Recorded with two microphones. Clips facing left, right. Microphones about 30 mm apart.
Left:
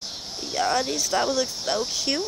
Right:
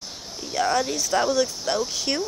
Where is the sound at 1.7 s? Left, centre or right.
Centre.